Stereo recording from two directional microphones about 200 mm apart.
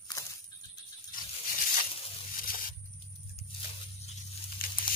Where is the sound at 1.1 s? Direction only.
45° left (ahead or behind).